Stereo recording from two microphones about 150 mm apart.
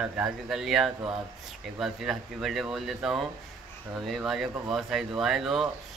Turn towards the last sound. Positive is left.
turn(degrees=0)  # may be behind; listen again after turning